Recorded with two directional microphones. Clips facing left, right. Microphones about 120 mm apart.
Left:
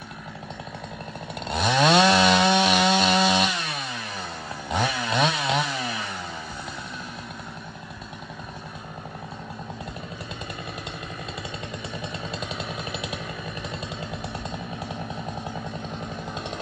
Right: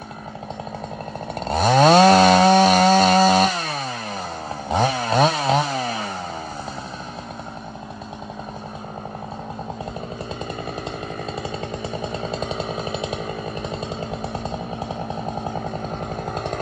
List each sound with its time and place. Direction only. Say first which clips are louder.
1.4 s chainsaw: right 6 dB; 40° right (ahead or behind)
11.9 s chainsaw: right 6 dB; 30° right (ahead or behind)
15.5 s chainsaw: right 6 dB; 45° right (ahead or behind)